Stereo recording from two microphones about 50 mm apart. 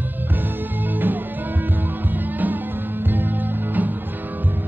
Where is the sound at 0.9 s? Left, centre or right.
Right.